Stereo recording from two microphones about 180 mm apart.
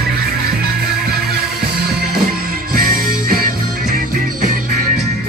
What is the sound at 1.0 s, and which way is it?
Music, 60° right (ahead or behind).